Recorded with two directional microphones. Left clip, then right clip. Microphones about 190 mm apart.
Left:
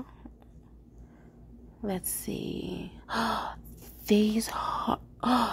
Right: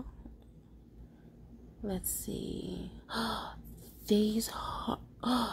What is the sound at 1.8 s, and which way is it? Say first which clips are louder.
A woman's voice: left 5 dB; 15° left (ahead or behind).